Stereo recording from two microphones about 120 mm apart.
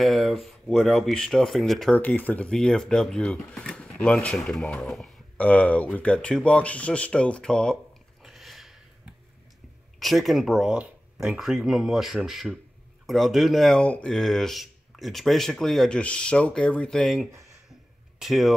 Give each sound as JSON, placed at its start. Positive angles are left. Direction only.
{"t": 0.0, "sound": "speech", "side_deg": 0}
{"t": 2.0, "sound": "speech", "side_deg": 15}
{"t": 8.2, "sound": "a sound", "side_deg": 0}
{"t": 9.9, "sound": "speech", "side_deg": 0}
{"t": 17.3, "sound": "a sound", "side_deg": -25}
{"t": 18.2, "sound": "speech", "side_deg": 0}